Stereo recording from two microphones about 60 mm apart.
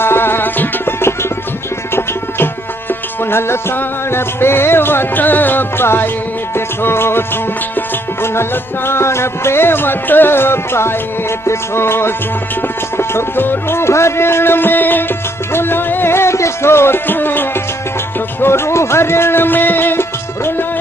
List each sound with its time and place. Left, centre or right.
0.0 s music: left
11.4 s speech: left
15.5 s music: left
18.4 s speech: left